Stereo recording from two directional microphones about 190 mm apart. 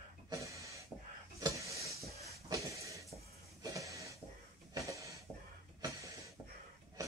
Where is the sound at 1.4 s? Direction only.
15° right (ahead or behind).